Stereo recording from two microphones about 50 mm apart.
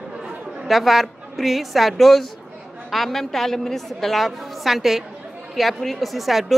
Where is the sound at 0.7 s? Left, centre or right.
Centre.